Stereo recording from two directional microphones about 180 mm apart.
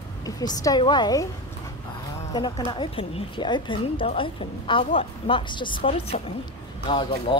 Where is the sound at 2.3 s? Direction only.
25° left (ahead or behind).